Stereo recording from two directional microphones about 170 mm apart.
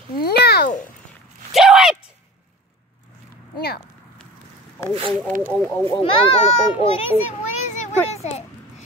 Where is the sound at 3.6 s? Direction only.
65° left (ahead or behind).